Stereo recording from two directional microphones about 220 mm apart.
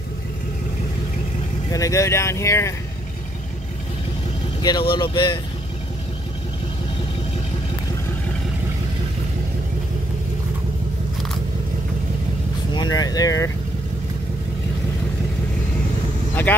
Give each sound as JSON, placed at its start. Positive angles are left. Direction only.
{"t": 1.7, "sound": "speech", "side_deg": 15}
{"t": 4.6, "sound": "speech", "side_deg": 20}
{"t": 12.7, "sound": "speech", "side_deg": 15}
{"t": 16.5, "sound": "speech", "side_deg": 10}